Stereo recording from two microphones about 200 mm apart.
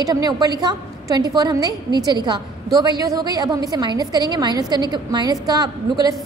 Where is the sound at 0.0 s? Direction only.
20° right (ahead or behind).